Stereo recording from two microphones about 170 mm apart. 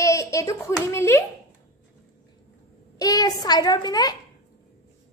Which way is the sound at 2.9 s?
20° left (ahead or behind).